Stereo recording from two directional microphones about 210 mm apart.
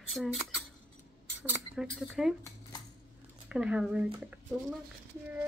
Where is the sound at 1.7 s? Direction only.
Centre (ahead or behind).